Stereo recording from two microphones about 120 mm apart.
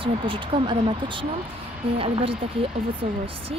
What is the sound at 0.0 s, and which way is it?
Speech, 45° right (ahead or behind).